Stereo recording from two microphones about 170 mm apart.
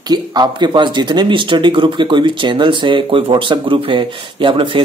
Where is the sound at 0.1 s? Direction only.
25° right (ahead or behind).